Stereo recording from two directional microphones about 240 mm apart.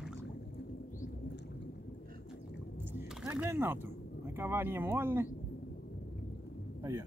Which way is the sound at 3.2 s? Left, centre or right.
Centre.